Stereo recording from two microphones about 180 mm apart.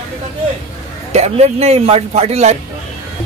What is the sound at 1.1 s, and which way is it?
A man's voice, 35° right (ahead or behind).